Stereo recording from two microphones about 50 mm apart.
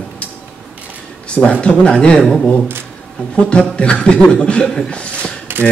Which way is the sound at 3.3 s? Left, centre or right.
Left.